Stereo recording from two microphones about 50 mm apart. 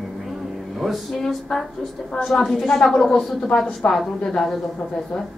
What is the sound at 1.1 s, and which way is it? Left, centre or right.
A woman's voice, centre.